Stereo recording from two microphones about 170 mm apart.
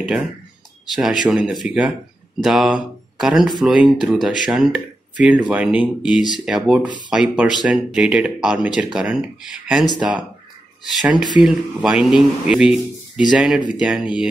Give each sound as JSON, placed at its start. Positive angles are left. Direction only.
{"t": 0.9, "sound": "speech", "side_deg": 0}